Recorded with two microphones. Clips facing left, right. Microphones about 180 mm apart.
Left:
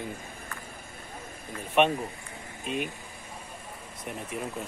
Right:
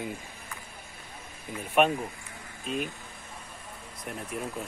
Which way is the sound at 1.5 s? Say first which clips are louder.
Even; 5° right (ahead or behind).